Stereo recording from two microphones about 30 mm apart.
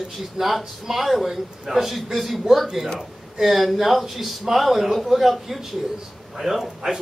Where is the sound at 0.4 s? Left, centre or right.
Centre.